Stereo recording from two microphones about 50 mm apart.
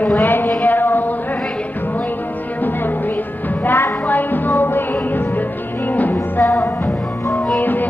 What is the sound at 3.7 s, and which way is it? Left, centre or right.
Music, left.